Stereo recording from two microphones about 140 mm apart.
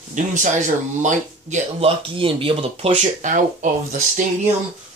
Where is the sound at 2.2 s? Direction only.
40° right (ahead or behind).